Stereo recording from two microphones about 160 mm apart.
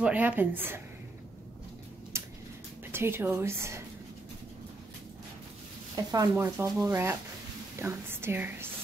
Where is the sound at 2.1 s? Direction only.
15° right (ahead or behind).